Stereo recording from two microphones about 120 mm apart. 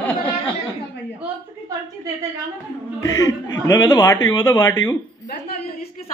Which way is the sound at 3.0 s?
25° left (ahead or behind).